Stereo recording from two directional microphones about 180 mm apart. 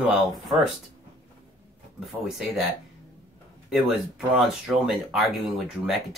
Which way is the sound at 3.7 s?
5° right (ahead or behind).